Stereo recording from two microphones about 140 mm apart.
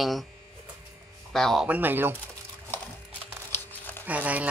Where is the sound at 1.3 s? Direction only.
5° left (ahead or behind).